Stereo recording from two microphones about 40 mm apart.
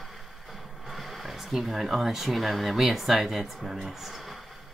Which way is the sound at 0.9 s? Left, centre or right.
Centre.